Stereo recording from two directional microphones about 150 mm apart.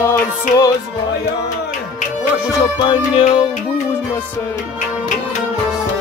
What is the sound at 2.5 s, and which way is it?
Music, 30° left (ahead or behind).